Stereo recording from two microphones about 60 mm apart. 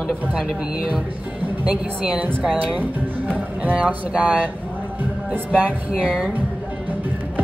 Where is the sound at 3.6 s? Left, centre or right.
Right.